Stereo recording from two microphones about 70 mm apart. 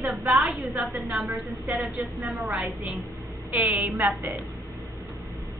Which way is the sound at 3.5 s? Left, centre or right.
Right.